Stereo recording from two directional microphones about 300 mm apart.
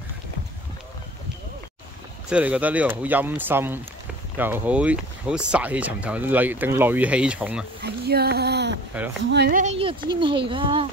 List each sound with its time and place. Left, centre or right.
2.2 s speech: centre
7.8 s speech: right
8.9 s speech: centre
9.3 s speech: right